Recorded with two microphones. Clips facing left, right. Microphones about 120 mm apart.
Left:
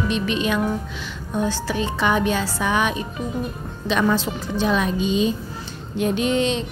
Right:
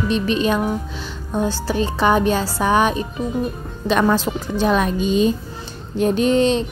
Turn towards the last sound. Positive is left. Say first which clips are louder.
# right 5 dB
turn(degrees=-40)  # may be behind; listen again after turning